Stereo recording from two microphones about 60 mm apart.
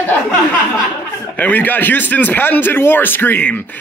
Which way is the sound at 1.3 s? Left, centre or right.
Left.